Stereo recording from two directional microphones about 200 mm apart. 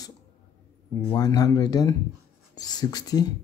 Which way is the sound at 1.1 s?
20° left (ahead or behind).